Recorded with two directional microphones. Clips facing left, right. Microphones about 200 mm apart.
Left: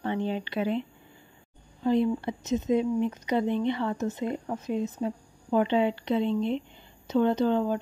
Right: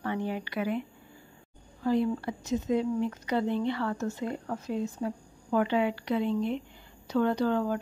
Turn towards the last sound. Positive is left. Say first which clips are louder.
# left 3 dB
turn(degrees=20)  # may be behind; listen again after turning